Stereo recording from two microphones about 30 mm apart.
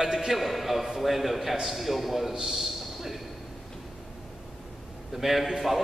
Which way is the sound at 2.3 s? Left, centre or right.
Centre.